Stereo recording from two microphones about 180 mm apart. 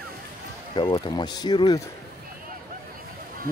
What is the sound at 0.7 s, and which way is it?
Speech, 25° left (ahead or behind).